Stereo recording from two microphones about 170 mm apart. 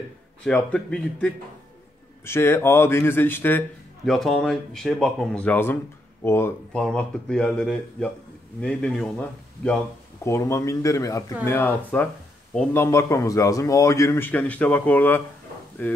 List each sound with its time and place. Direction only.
0.4 s speech: 5° left (ahead or behind)
4.1 s speech: centre (ahead or behind)
10.2 s speech: 15° left (ahead or behind)